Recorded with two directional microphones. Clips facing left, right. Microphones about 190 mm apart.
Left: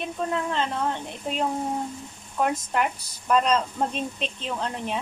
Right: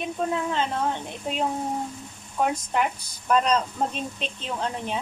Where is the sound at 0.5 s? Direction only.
5° right (ahead or behind).